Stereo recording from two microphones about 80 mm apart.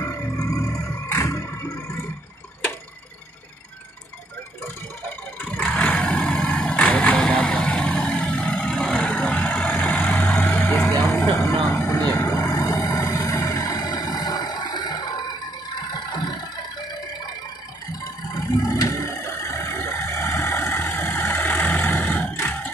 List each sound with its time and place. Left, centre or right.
0.0 s a sound: left
5.4 s vehicle: centre; by 12.0 s left
12.0 s vehicle: left
12.3 s vehicle: left
18.3 s vehicle: left
22.3 s a sound: left